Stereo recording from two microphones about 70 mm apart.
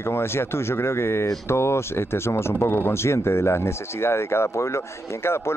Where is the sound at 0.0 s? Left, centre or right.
Left.